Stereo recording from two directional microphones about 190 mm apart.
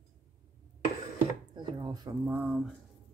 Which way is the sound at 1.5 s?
25° right (ahead or behind).